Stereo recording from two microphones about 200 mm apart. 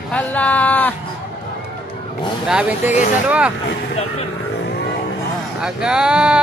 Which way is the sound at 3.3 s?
5° right (ahead or behind).